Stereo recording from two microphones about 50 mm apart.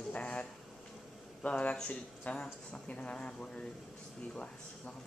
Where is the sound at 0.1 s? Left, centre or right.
Left.